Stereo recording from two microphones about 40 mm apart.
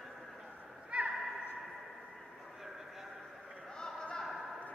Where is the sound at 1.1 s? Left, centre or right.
Centre.